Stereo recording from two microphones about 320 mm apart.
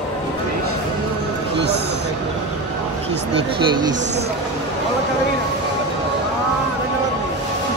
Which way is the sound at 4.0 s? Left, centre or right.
Right.